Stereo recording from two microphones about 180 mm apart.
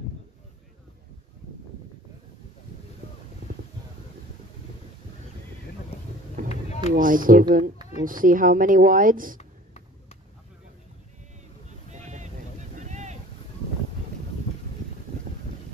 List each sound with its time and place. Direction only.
6.5 s a sound: 40° left (ahead or behind)
6.9 s speech: 50° right (ahead or behind)
11.9 s boat: 40° right (ahead or behind)